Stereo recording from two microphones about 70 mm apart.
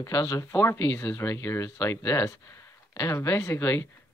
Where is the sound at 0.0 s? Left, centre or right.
Left.